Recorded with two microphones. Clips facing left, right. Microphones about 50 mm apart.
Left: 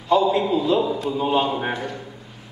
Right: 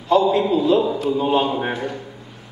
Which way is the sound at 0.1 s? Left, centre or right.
Centre.